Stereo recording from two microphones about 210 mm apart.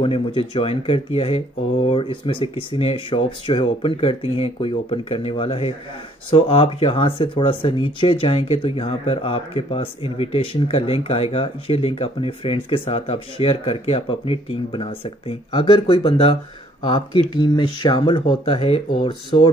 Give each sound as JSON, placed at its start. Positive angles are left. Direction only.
{"t": 0.0, "sound": "speech", "side_deg": 25}